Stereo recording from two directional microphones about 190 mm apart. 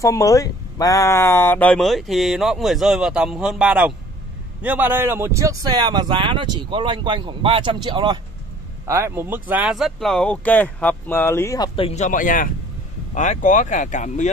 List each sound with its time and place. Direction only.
0.0 s speech: 15° left (ahead or behind); by 8.2 s 25° right (ahead or behind)
8.8 s speech: 15° right (ahead or behind); by 14.3 s 40° left (ahead or behind)